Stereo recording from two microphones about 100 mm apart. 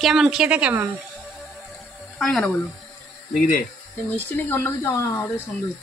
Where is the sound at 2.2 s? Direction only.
Centre (ahead or behind).